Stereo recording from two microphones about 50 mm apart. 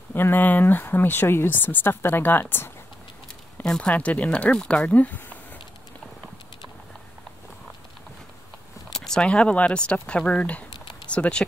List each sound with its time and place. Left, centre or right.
0.1 s speech: left
3.6 s speech: centre
3.9 s speech: left
4.8 s a sound: left
8.9 s a sound: centre
9.3 s speech: left